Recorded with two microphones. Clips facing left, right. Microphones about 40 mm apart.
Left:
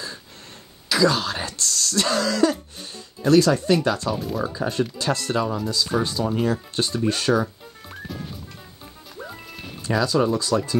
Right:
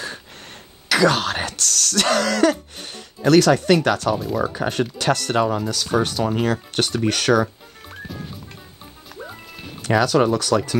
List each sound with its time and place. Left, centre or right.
0.8 s speech: right
9.2 s music: centre
9.8 s speech: right